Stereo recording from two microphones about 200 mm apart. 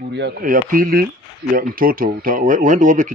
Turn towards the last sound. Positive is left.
turn(degrees=-40)  # may be behind; listen again after turning